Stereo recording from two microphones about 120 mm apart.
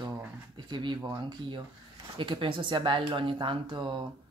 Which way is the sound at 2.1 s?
45° right (ahead or behind).